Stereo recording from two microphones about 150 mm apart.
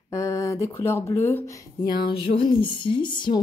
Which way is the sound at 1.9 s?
30° left (ahead or behind).